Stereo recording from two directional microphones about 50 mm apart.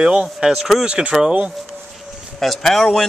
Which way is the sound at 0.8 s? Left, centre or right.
Centre.